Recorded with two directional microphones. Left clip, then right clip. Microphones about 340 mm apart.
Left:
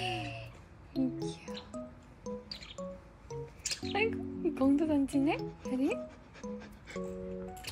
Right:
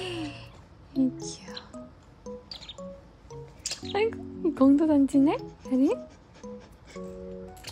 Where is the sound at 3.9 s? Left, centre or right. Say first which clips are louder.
Right 6 dB; right.